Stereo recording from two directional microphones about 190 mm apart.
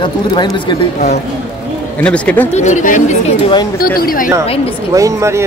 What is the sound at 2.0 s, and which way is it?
Speech, 5° left (ahead or behind).